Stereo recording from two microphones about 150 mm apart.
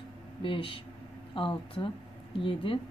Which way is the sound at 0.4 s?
35° left (ahead or behind).